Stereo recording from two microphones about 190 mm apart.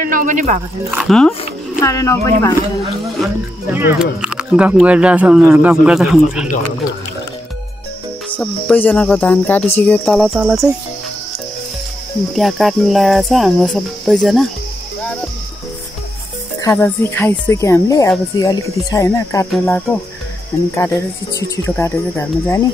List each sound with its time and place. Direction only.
0.0 s speech: 45° right (ahead or behind)
0.9 s speech: centre (ahead or behind)
1.8 s cricket: 15° left (ahead or behind)
3.7 s speech: 10° right (ahead or behind)
8.4 s cricket: 10° left (ahead or behind)
9.8 s speech: 5° left (ahead or behind)
12.4 s speech: centre (ahead or behind)
16.6 s cricket: 10° left (ahead or behind)